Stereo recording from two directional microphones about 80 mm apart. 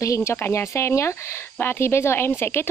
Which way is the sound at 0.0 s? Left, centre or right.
Left.